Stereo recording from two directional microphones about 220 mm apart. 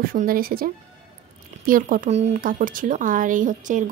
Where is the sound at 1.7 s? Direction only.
40° right (ahead or behind).